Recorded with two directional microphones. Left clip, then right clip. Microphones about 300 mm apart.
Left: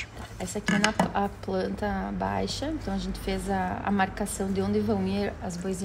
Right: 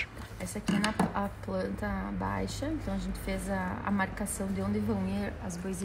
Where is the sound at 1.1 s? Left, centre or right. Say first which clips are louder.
Left 6 dB; left.